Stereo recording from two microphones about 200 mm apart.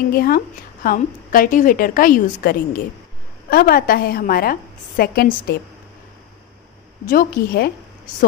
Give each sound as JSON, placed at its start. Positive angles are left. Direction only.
{"t": 0.1, "sound": "a woman's voice", "side_deg": 50}
{"t": 7.1, "sound": "a woman's voice", "side_deg": 50}